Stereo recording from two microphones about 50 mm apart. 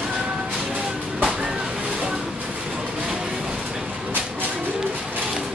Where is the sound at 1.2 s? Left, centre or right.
Centre.